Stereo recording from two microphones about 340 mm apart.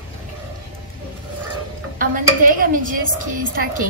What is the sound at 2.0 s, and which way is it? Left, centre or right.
Speech, right.